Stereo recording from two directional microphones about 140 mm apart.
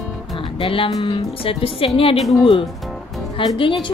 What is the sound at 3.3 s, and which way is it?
Speech, 40° left (ahead or behind).